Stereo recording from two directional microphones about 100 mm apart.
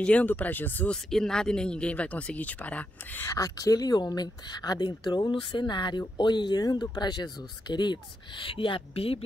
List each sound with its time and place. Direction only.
0.0 s speech: 15° left (ahead or behind)
1.1 s speech: 5° left (ahead or behind)
3.3 s speech: 35° left (ahead or behind); by 9.2 s 70° left (ahead or behind)